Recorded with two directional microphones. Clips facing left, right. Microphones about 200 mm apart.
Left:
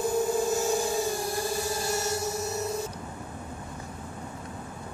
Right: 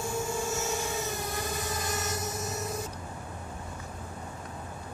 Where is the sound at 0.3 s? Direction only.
35° left (ahead or behind).